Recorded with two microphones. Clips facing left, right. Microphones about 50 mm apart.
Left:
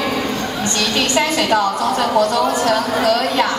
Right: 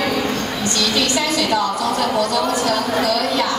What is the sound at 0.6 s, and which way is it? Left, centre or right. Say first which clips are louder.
A woman's voice: left 1 dB; left.